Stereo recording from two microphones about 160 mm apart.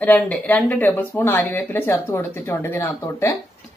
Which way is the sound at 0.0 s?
10° left (ahead or behind).